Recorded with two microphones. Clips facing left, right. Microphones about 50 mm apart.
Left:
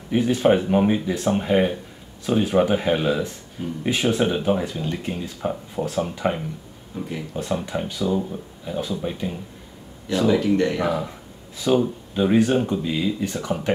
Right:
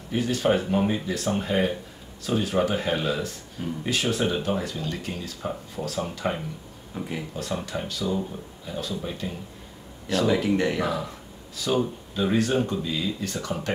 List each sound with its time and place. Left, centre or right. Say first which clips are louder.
0.1 s a man's voice: left 5 dB; left
6.9 s speech: left 2 dB; right
7.3 s a man's voice: left 6 dB; left
10.2 s speech: left 4 dB; centre
10.8 s a man's voice: left 4 dB; centre